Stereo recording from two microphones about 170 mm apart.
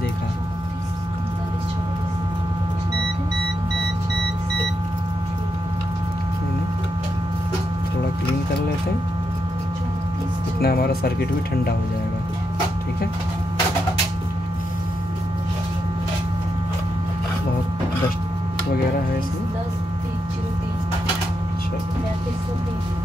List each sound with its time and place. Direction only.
10.6 s speech: 65° left (ahead or behind)